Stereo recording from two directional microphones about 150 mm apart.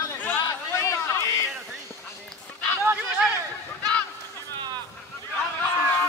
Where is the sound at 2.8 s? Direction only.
10° right (ahead or behind).